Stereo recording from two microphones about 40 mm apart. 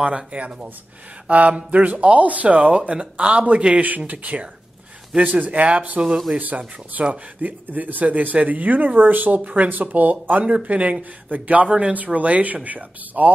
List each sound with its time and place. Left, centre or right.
0.0 s speech: right
4.1 s speech: right
5.1 s speech: right
5.9 s speech: centre
6.3 s speech: right
7.6 s speech: right
10.4 s speech: right
11.6 s speech: right
11.9 s speech: right